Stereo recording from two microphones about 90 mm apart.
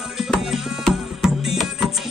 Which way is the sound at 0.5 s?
Centre (ahead or behind).